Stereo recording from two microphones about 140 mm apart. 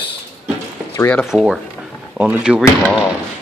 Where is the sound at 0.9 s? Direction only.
15° left (ahead or behind).